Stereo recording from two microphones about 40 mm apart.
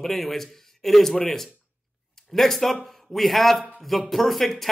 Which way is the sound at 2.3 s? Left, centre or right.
Centre.